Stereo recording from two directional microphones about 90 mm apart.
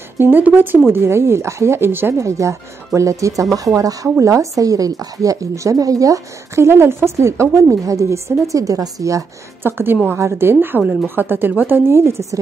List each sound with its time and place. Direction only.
0.2 s a woman's voice: 25° right (ahead or behind); by 9.2 s 40° right (ahead or behind)
9.6 s a woman's voice: 25° right (ahead or behind)